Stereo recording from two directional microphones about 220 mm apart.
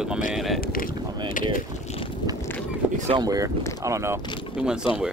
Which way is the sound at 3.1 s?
15° right (ahead or behind).